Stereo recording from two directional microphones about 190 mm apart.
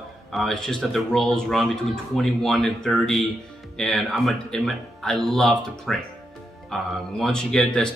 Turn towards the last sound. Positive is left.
turn(degrees=5)  # may be behind; listen again after turning